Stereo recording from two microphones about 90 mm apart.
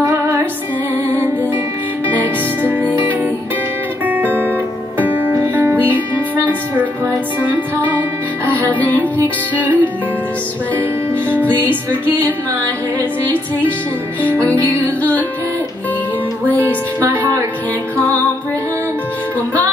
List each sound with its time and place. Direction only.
4.0 s guitar: 20° right (ahead or behind)
4.9 s music: 20° right (ahead or behind)
8.6 s music: 20° left (ahead or behind)
9.6 s music: 20° right (ahead or behind)
11.2 s music: 20° right (ahead or behind)
16.6 s music: 20° right (ahead or behind)